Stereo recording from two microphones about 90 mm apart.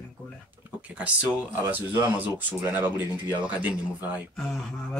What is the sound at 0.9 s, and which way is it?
Speech, 15° right (ahead or behind).